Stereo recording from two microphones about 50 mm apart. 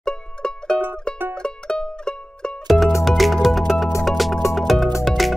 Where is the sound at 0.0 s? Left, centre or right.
Centre.